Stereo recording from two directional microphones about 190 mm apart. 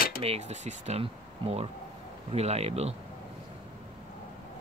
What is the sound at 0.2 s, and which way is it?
Speech, 35° right (ahead or behind).